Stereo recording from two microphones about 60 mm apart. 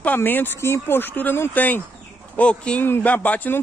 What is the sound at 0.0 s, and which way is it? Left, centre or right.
Speech, left.